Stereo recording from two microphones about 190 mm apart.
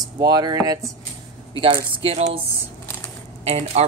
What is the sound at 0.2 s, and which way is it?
Speech, 20° right (ahead or behind).